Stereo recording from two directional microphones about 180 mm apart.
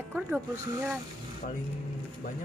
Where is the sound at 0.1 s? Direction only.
15° right (ahead or behind).